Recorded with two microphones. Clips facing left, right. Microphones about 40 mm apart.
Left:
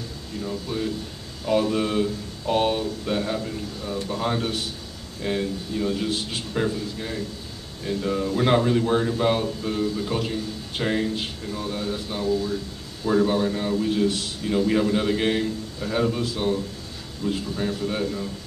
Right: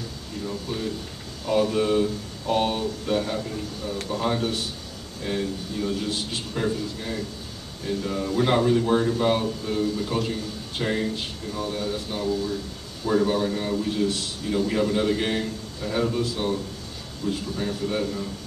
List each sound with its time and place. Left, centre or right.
1.4 s a man's voice: centre
17.2 s a man's voice: left
17.6 s a man's voice: centre